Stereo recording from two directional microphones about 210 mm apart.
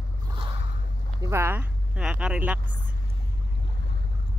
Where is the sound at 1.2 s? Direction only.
10° right (ahead or behind).